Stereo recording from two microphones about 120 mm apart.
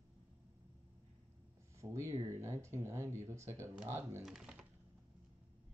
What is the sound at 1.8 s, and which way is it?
Speech, 25° right (ahead or behind).